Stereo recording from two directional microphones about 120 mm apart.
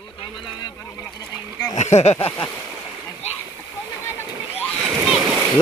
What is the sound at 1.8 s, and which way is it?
Speech, 70° left (ahead or behind).